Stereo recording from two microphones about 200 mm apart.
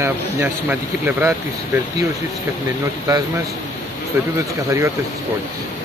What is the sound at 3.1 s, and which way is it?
Speech, 20° right (ahead or behind).